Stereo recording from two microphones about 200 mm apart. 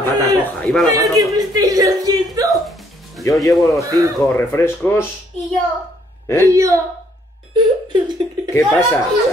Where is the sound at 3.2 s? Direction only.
15° left (ahead or behind).